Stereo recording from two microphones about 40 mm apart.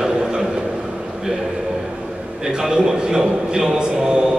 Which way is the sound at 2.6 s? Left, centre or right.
Centre.